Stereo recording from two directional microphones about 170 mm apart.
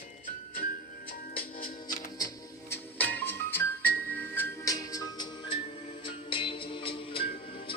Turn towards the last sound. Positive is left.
turn(degrees=30)  # may be behind; listen again after turning